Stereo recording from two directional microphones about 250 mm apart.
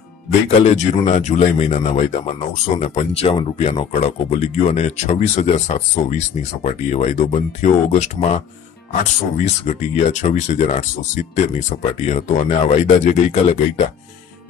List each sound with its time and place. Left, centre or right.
0.5 s speech: left
9.4 s speech: left